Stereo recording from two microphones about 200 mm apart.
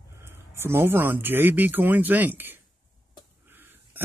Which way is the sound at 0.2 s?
10° right (ahead or behind).